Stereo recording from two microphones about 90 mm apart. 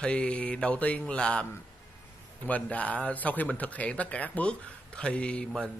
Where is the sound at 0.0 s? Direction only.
15° left (ahead or behind).